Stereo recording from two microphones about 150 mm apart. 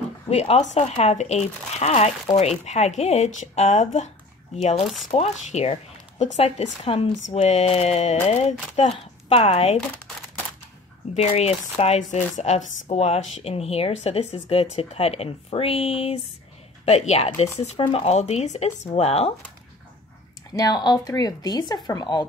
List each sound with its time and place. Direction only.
0.3 s speech: 45° left (ahead or behind)
11.1 s speech: 45° left (ahead or behind)
20.5 s speech: 25° left (ahead or behind)